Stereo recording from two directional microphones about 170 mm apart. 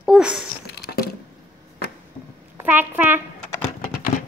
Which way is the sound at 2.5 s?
10° right (ahead or behind).